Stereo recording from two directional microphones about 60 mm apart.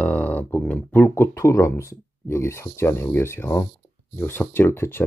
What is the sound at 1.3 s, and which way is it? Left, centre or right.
Speech, left.